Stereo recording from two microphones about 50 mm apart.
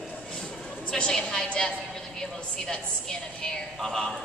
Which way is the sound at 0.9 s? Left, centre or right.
Centre.